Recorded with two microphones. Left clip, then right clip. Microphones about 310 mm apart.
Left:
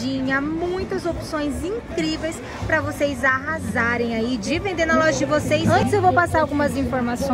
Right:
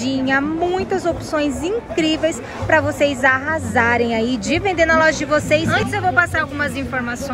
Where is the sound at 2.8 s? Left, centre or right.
Centre.